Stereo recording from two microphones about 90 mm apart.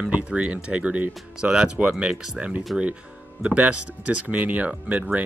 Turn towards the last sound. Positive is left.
turn(degrees=-15)  # may be behind; listen again after turning